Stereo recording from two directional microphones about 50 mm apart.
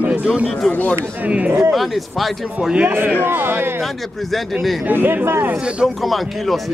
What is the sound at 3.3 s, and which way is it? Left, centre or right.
Speech, right.